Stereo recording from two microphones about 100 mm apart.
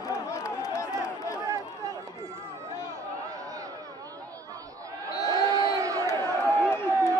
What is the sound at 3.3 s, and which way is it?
Chatter, 35° right (ahead or behind).